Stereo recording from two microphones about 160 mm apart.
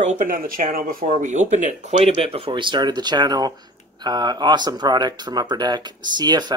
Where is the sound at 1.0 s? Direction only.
45° right (ahead or behind).